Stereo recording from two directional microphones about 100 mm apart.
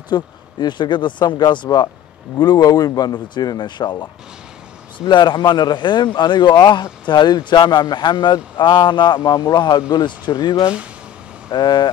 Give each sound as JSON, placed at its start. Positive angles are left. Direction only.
{"t": 0.1, "sound": "speech", "side_deg": 45}